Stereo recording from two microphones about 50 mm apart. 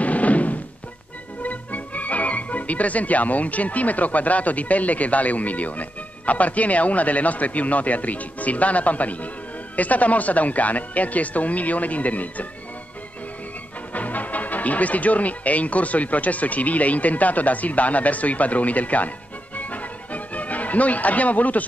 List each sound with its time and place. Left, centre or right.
0.0 s a sound: left
1.4 s speech: left
13.9 s speech: left